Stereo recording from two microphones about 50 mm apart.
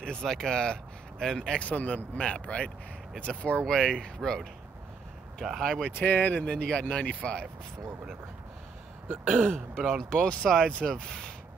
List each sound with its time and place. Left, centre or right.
0.0 s speech: centre
1.6 s speech: left
5.6 s speech: centre
5.9 s speech: left
6.4 s speech: centre
6.9 s speech: left
9.1 s throat clearing: right
10.0 s speech: centre